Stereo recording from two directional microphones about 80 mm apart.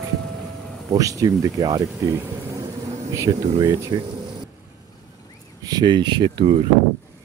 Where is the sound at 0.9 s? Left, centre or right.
Right.